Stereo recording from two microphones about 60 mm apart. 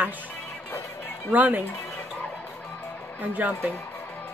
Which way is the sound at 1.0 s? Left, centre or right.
Left.